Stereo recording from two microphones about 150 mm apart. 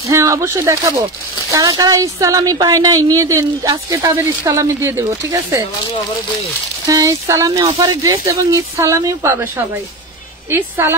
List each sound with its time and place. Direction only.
0.1 s a woman's voice: 20° right (ahead or behind)
6.9 s a woman's voice: 20° right (ahead or behind)